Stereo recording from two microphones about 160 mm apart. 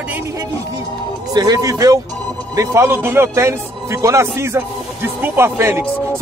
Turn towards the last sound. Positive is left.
turn(degrees=-15)  # may be behind; listen again after turning